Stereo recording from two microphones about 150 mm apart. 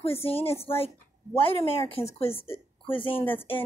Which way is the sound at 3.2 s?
10° left (ahead or behind).